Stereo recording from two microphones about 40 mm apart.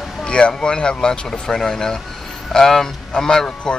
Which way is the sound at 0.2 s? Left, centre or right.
Left.